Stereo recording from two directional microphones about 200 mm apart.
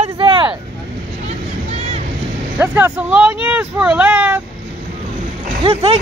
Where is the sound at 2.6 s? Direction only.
10° right (ahead or behind).